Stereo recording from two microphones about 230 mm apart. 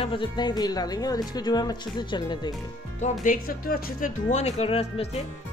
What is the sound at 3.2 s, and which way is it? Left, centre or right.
Speech, left.